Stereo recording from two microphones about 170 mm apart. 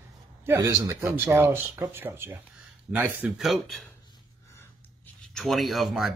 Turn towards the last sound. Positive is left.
turn(degrees=0)  # may be behind; listen again after turning